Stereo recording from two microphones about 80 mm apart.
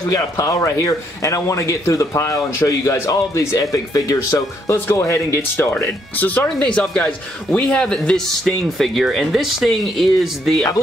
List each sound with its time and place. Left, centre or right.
0.1 s speech: left
4.7 s a man's voice: left; by 10.6 s centre